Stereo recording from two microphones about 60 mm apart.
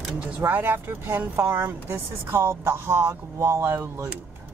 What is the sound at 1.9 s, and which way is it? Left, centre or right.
Speech, right.